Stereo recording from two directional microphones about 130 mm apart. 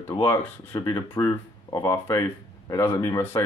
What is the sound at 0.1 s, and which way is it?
Speech, 30° left (ahead or behind).